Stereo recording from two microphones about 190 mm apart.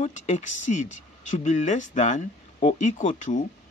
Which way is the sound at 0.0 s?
40° left (ahead or behind).